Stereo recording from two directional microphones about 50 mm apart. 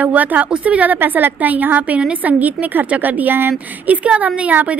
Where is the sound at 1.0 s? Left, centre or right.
Right.